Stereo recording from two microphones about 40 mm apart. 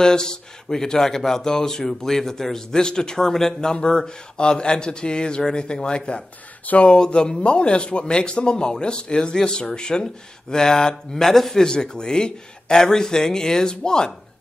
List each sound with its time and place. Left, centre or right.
0.0 s speech: centre
3.7 s a man's voice: left
6.6 s speech: left
6.9 s a man's voice: left
11.6 s speech: centre